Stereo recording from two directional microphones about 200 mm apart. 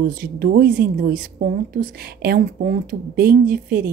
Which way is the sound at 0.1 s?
45° right (ahead or behind).